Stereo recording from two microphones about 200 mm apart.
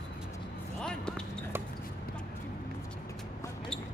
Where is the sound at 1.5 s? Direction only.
10° right (ahead or behind).